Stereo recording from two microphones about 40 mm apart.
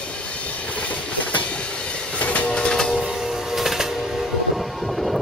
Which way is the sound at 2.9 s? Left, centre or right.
Centre.